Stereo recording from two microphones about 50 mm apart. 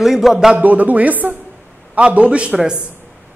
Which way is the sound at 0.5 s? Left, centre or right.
Right.